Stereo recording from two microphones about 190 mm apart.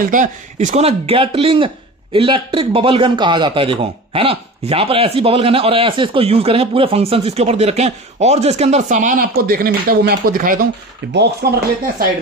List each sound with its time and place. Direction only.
0.0 s a man's voice: 45° right (ahead or behind)